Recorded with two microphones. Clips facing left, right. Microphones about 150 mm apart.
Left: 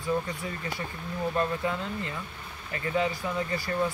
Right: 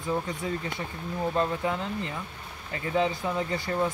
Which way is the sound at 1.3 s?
20° right (ahead or behind).